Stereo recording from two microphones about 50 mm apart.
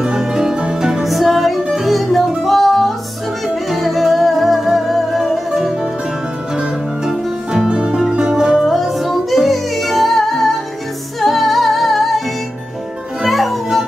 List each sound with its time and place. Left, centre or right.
0.0 s music: centre
7.1 s music: centre
8.6 s music: centre
13.2 s music: centre